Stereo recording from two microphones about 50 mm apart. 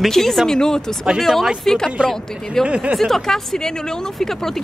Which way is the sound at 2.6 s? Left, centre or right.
Right.